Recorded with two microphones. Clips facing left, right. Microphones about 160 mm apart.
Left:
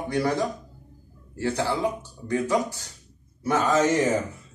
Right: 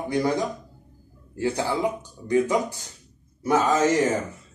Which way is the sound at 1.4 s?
15° right (ahead or behind).